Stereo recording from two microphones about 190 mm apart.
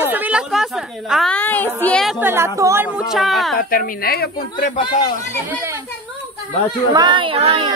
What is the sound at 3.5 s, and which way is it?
A woman's voice, 50° left (ahead or behind).